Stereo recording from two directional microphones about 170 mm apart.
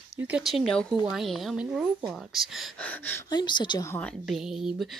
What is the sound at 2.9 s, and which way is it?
Speech, 10° left (ahead or behind).